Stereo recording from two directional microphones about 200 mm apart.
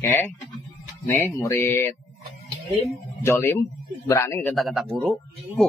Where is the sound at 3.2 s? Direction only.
10° left (ahead or behind).